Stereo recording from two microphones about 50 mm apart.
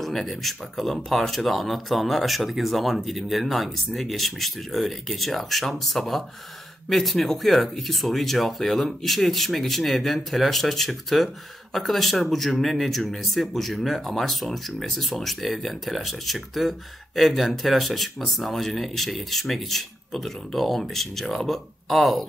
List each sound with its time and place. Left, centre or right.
0.0 s speech: centre